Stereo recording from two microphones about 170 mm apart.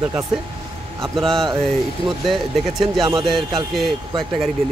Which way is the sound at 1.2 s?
Centre (ahead or behind).